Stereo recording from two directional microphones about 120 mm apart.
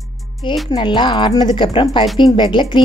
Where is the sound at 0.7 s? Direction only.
35° left (ahead or behind).